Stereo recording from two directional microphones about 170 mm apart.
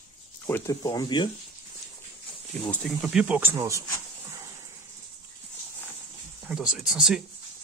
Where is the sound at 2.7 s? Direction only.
Centre (ahead or behind); by 3.8 s 20° right (ahead or behind).